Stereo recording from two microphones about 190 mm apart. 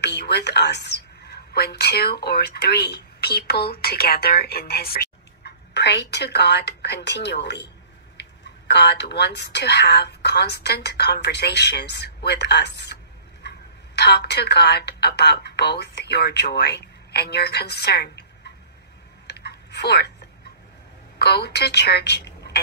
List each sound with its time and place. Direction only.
0.0 s a woman's voice: 60° left (ahead or behind)
19.2 s a sound: 60° left (ahead or behind)
21.2 s a woman's voice: 60° left (ahead or behind)